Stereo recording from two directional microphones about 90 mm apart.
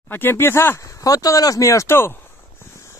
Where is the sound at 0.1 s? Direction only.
25° left (ahead or behind).